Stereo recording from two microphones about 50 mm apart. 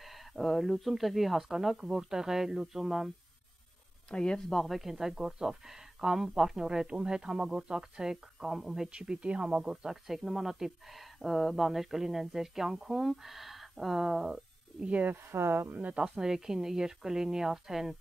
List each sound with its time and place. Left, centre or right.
0.0 s speech: centre
4.1 s speech: centre
4.6 s speech: centre
8.9 s speech: centre
14.9 s speech: right
15.2 s speech: right
15.7 s speech: right
16.0 s speech: centre